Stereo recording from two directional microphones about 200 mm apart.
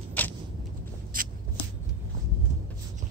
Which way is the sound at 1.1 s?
45° right (ahead or behind).